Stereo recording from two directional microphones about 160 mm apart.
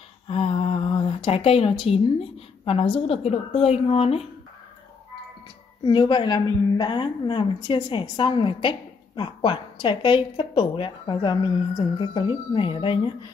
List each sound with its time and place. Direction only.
0.3 s speech: 35° left (ahead or behind)
5.9 s a woman's voice: 30° left (ahead or behind)